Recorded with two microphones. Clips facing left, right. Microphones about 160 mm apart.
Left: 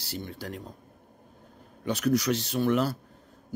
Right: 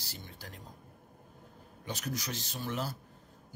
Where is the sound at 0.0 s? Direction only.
70° left (ahead or behind).